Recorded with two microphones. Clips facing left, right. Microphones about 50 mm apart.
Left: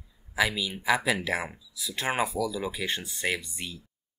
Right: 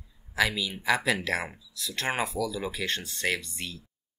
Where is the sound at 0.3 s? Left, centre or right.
Centre.